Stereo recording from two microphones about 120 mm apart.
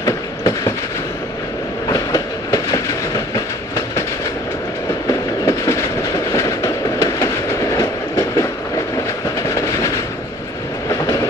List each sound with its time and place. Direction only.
0.0 s train: 25° left (ahead or behind)
1.9 s train: 30° left (ahead or behind)
5.4 s train: 25° left (ahead or behind)